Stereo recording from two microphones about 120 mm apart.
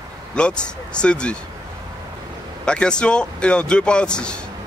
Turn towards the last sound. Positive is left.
turn(degrees=10)  # may be behind; listen again after turning